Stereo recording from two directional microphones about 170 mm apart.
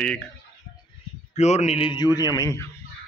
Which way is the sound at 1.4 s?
40° left (ahead or behind).